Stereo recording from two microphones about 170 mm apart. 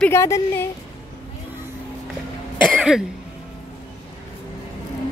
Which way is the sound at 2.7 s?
5° right (ahead or behind).